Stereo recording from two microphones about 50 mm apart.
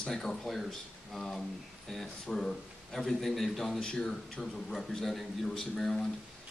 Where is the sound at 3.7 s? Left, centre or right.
Centre.